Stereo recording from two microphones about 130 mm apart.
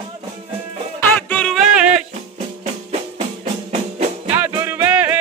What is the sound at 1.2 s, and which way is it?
Music, 10° left (ahead or behind).